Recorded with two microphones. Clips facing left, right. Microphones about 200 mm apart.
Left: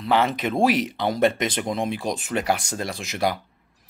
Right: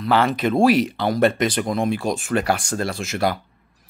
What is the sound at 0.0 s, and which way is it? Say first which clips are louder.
Speech: right 3 dB; 20° left (ahead or behind).